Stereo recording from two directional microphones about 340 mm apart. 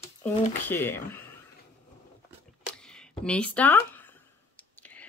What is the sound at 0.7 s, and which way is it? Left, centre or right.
Speech, centre.